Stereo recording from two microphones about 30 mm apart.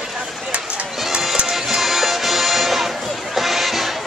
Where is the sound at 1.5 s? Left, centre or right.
Centre.